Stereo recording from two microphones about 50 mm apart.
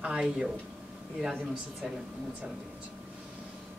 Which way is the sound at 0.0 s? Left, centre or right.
Centre.